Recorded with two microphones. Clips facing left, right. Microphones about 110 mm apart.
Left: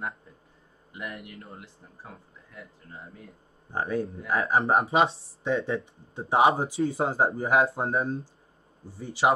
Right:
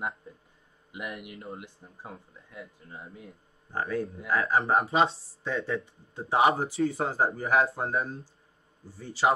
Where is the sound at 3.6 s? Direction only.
25° left (ahead or behind).